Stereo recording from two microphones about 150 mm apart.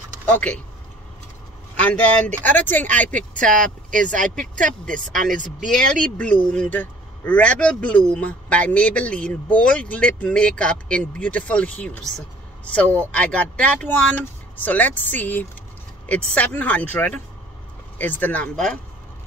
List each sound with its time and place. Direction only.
0.2 s speech: 10° left (ahead or behind)
1.9 s speech: 10° left (ahead or behind)
4.9 s speech: 60° right (ahead or behind)
6.0 s speech: 5° left (ahead or behind)